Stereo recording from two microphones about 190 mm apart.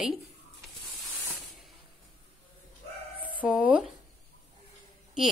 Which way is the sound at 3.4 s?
5° right (ahead or behind).